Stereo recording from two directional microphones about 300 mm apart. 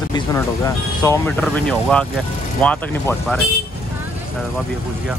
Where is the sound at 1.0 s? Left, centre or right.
Centre.